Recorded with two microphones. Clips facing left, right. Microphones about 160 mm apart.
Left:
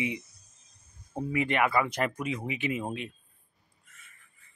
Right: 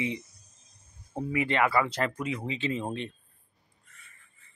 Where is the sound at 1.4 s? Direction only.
20° left (ahead or behind).